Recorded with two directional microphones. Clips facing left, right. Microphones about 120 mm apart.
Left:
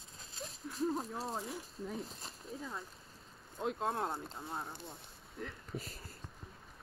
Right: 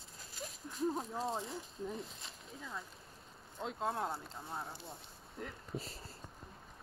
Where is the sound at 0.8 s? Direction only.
Centre (ahead or behind).